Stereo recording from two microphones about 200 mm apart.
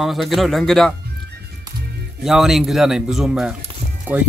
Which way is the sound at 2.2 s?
Centre (ahead or behind).